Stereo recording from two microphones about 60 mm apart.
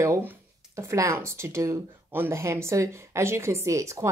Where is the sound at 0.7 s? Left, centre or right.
Right.